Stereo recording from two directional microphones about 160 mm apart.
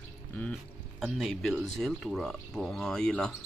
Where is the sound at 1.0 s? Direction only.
Centre (ahead or behind).